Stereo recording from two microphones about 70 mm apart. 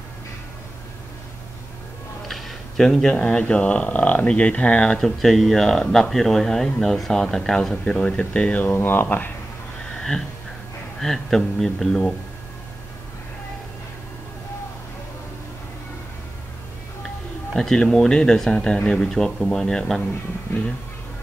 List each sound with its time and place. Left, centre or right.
2.2 s speech: centre
8.6 s speech: left
9.9 s a sound: centre
11.0 s speech: centre
17.6 s speech: centre